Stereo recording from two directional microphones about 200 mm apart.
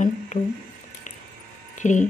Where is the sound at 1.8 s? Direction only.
40° left (ahead or behind).